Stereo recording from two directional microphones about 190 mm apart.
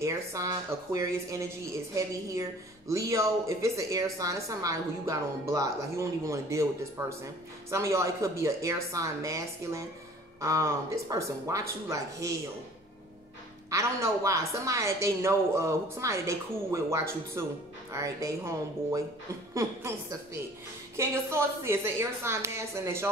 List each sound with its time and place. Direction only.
0.0 s a woman's voice: 15° right (ahead or behind)
13.7 s a woman's voice: 15° right (ahead or behind)